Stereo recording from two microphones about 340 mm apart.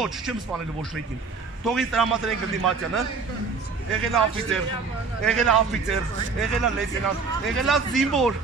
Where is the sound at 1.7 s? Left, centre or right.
Centre.